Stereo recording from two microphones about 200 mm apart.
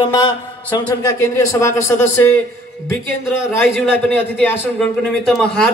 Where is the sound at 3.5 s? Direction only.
10° left (ahead or behind).